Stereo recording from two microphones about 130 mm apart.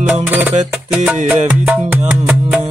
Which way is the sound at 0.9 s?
5° right (ahead or behind).